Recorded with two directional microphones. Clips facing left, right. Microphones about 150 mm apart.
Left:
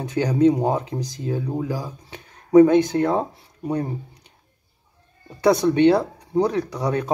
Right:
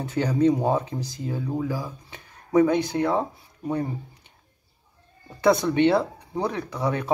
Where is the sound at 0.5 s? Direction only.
20° left (ahead or behind).